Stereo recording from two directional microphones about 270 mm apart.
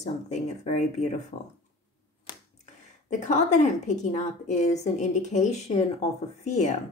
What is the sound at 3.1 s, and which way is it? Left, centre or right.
A woman's voice, left.